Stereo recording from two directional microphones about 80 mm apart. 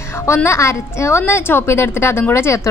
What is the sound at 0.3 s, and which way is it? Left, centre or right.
A woman's voice, left.